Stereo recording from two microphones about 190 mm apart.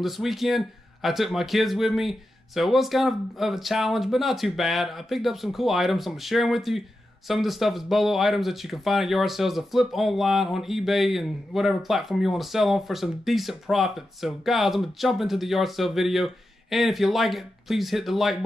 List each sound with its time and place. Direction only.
0.0 s speech: centre (ahead or behind)